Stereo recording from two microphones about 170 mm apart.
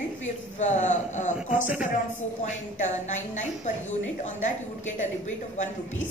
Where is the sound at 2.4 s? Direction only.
45° left (ahead or behind).